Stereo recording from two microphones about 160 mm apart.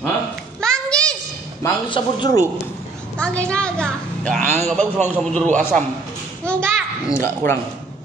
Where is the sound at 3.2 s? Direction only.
5° left (ahead or behind).